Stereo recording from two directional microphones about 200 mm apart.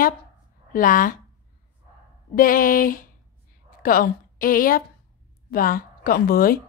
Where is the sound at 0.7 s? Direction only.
45° left (ahead or behind).